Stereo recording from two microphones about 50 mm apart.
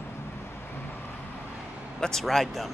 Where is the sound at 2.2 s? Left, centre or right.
Centre.